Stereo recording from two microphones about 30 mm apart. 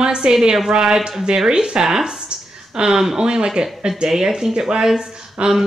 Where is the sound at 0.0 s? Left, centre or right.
Right.